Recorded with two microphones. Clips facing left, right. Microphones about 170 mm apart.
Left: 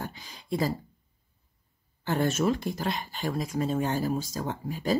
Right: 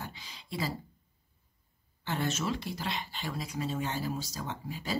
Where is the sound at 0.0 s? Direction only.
50° left (ahead or behind).